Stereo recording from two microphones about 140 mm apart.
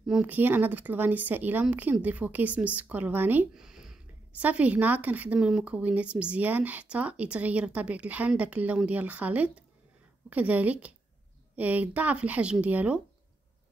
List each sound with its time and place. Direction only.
0.0 s a woman's voice: 5° right (ahead or behind)